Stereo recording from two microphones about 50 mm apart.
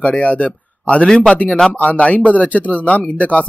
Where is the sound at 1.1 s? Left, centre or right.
Centre.